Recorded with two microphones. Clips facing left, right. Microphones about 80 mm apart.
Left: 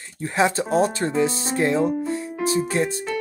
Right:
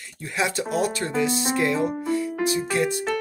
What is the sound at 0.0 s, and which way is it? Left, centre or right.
Speech, left.